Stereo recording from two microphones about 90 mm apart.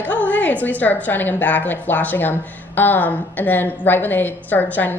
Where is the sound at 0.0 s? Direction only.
15° left (ahead or behind).